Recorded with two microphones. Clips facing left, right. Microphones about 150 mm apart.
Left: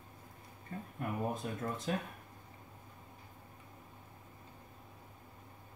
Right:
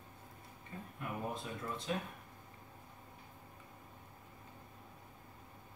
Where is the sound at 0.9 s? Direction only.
45° left (ahead or behind).